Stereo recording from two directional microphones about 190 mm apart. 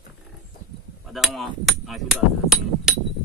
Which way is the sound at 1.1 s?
Centre (ahead or behind).